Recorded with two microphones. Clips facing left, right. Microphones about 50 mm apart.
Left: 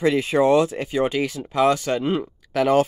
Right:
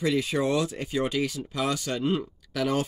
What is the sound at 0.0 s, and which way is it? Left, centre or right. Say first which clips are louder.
Speech: left 7 dB; left.